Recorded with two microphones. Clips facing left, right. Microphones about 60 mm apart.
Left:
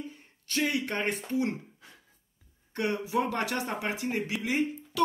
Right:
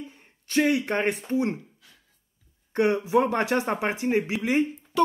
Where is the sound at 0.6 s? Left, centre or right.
Right.